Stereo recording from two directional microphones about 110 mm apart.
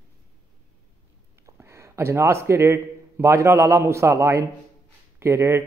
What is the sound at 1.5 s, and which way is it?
A man's voice, 25° right (ahead or behind).